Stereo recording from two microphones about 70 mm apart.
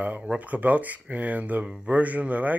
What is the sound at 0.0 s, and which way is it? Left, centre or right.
Speech, centre.